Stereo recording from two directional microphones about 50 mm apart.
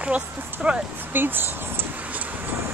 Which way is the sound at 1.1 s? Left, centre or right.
Right.